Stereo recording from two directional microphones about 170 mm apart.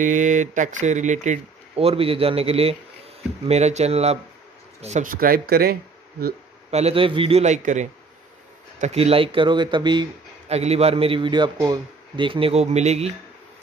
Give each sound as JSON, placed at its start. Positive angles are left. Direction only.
{"t": 0.0, "sound": "speech", "side_deg": -45}
{"t": 4.8, "sound": "speech", "side_deg": -50}
{"t": 6.7, "sound": "speech", "side_deg": -35}
{"t": 10.5, "sound": "speech", "side_deg": -40}